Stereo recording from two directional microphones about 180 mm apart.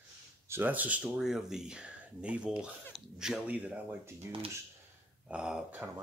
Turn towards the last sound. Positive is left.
turn(degrees=-10)  # may be behind; listen again after turning